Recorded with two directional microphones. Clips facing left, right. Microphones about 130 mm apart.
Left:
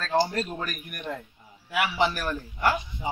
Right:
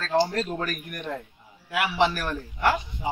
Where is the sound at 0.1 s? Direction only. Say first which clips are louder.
Right 2 dB; 5° left (ahead or behind).